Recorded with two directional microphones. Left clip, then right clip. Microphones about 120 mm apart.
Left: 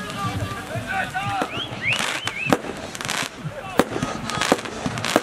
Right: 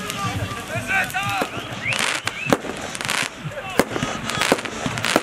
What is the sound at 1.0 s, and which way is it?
Music, 15° right (ahead or behind).